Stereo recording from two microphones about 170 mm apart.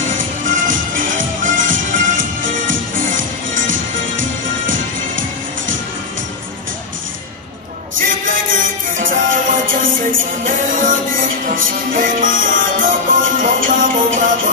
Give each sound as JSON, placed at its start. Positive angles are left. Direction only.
{"t": 0.4, "sound": "music", "side_deg": -50}
{"t": 3.6, "sound": "music", "side_deg": -90}
{"t": 8.0, "sound": "music", "side_deg": -50}